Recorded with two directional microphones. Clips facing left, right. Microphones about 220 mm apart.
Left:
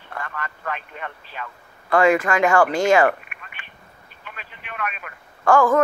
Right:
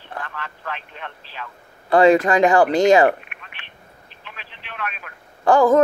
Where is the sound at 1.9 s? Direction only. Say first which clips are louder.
Right 4 dB; 35° right (ahead or behind).